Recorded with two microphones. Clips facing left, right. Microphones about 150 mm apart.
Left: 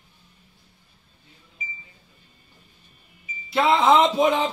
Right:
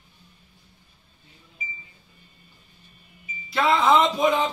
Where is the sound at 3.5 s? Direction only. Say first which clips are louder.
Left 2 dB; 25° left (ahead or behind).